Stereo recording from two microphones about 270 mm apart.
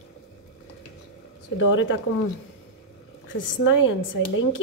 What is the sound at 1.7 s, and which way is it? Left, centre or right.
Speech, left.